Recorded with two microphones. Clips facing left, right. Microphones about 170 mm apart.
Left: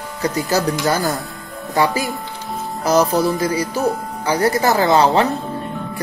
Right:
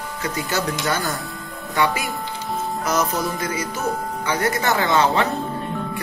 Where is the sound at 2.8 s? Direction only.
35° left (ahead or behind).